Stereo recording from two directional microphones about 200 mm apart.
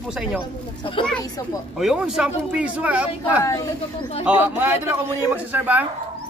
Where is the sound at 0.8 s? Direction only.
25° left (ahead or behind).